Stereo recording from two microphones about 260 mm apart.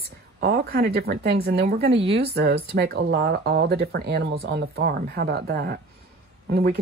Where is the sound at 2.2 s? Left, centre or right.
Right.